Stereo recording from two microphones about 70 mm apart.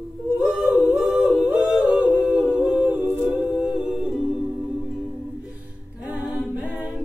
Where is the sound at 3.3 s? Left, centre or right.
Centre.